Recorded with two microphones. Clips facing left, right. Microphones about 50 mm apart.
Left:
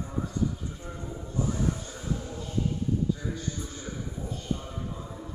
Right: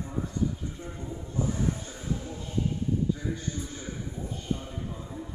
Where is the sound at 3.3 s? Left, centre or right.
Centre.